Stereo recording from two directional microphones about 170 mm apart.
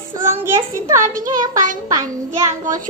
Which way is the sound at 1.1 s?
50° right (ahead or behind).